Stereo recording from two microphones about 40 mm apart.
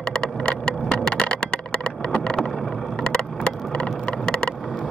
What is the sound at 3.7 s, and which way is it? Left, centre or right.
Vehicle, left.